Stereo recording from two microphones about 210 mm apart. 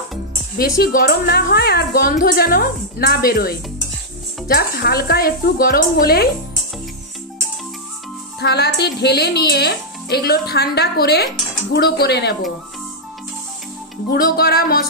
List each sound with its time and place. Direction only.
0.6 s a woman's voice: 45° left (ahead or behind)
8.4 s a woman's voice: 50° left (ahead or behind)
14.1 s a woman's voice: 45° left (ahead or behind)